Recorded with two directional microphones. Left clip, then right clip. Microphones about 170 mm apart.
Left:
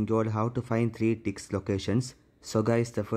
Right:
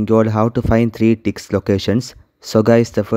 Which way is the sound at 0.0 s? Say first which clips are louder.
Right 13 dB; 40° right (ahead or behind).